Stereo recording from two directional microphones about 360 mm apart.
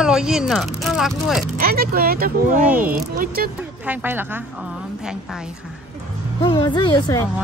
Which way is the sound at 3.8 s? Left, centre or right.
Centre.